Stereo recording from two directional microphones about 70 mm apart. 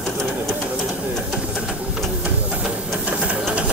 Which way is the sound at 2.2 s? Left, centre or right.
Centre.